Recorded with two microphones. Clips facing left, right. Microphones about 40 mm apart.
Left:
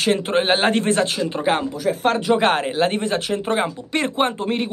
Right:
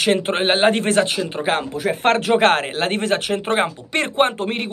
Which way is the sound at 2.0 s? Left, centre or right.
Right.